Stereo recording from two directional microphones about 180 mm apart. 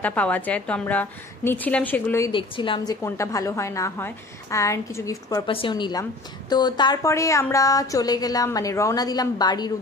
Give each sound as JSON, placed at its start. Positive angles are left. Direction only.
{"t": 0.0, "sound": "a woman's voice", "side_deg": 10}
{"t": 2.3, "sound": "a woman's voice", "side_deg": 30}
{"t": 5.5, "sound": "speech", "side_deg": 30}